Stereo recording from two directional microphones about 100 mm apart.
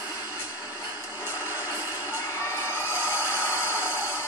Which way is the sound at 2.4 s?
25° left (ahead or behind).